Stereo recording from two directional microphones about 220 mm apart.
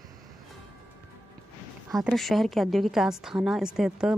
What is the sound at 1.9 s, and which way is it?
A woman's voice, centre (ahead or behind).